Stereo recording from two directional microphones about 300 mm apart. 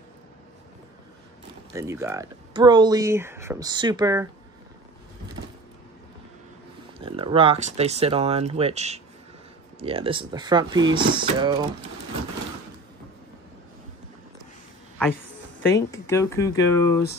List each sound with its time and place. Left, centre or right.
1.7 s speech: centre
7.0 s speech: centre
15.7 s speech: centre